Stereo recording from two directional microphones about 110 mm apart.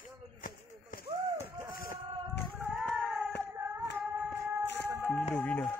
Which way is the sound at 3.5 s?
20° right (ahead or behind).